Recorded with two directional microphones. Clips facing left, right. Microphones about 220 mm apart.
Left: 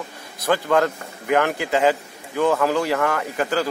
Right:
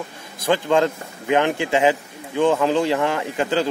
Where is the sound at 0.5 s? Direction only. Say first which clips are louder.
Right 1 dB; 20° right (ahead or behind).